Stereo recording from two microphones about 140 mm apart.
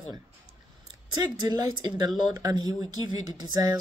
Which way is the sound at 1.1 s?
30° right (ahead or behind).